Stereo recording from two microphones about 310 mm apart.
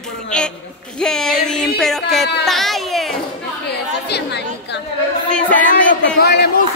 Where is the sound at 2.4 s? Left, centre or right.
Centre.